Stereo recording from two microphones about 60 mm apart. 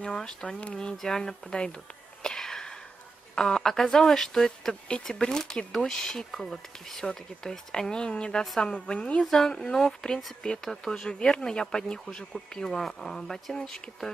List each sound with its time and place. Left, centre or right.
0.1 s speech: centre
2.2 s a sound: centre
3.3 s speech: centre